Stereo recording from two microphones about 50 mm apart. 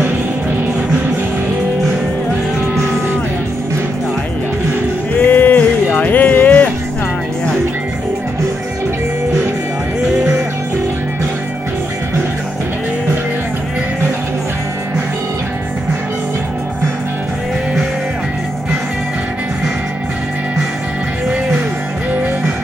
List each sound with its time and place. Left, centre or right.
5.1 s music: left